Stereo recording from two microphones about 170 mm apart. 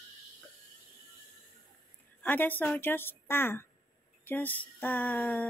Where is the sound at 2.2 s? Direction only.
10° left (ahead or behind).